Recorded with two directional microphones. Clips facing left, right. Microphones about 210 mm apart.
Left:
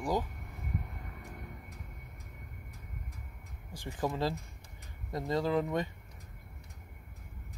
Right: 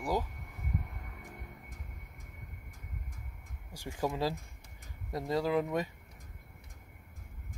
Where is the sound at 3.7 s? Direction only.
10° right (ahead or behind).